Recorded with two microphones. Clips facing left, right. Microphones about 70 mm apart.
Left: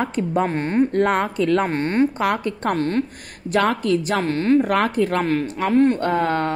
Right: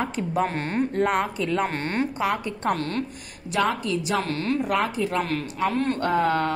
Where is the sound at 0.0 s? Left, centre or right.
Left.